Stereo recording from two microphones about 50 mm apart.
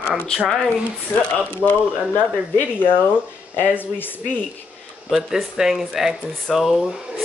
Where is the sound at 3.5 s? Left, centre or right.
Left.